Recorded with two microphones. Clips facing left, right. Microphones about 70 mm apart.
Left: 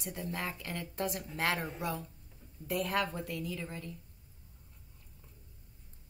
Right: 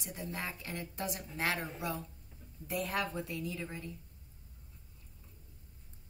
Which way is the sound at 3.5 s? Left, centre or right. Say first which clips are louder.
Even; right.